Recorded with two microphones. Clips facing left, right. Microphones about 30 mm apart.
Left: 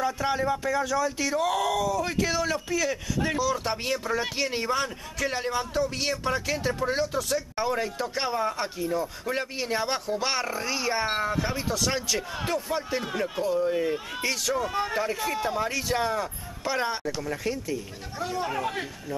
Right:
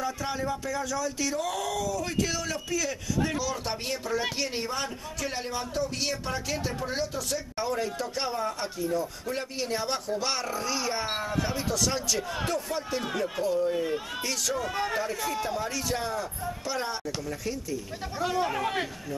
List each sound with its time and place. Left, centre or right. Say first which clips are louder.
0.0 s a man's voice: left 5 dB; centre
14.5 s speech: left 1 dB; centre
15.0 s speech: left 2 dB; centre
18.2 s speech: right 1 dB; centre